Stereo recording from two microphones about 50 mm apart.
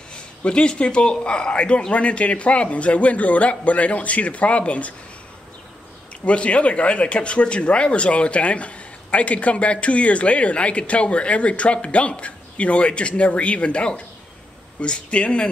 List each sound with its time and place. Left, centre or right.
0.1 s speech: centre
6.2 s speech: left